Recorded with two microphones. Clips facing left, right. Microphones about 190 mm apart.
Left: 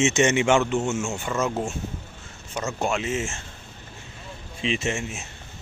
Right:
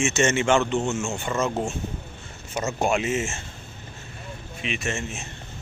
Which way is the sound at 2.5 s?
10° right (ahead or behind).